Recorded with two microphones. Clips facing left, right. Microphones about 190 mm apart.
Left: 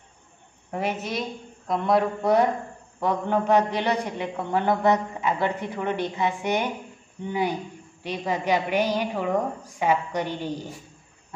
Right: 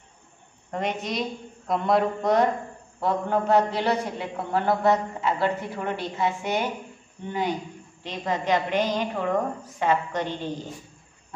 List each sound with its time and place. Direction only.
0.7 s speech: 5° left (ahead or behind)
3.0 s a woman's voice: 15° left (ahead or behind)